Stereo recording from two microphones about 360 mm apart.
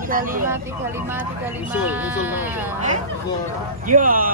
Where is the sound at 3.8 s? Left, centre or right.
Right.